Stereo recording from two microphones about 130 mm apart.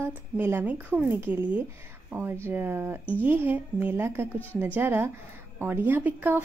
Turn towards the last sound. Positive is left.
turn(degrees=-15)  # may be behind; listen again after turning